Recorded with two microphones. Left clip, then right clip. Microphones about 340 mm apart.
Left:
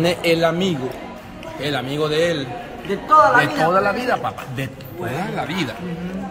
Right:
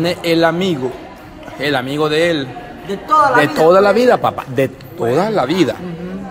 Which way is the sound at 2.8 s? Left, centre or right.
Right.